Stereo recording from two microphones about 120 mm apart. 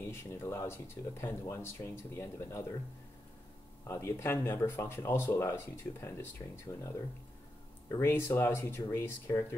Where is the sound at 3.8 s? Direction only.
25° left (ahead or behind).